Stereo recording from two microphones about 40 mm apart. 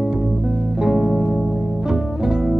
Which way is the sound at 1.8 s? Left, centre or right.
Centre.